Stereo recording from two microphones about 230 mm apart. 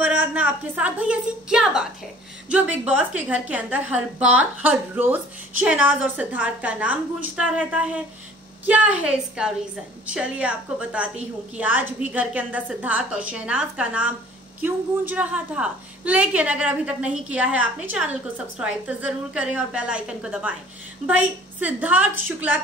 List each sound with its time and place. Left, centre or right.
0.0 s a woman's voice: centre